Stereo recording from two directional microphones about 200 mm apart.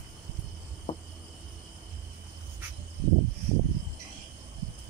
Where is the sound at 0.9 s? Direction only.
30° left (ahead or behind).